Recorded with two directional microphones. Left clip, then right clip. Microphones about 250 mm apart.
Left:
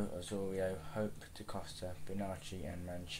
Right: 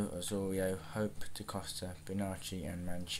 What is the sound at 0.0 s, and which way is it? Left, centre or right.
Speech, right.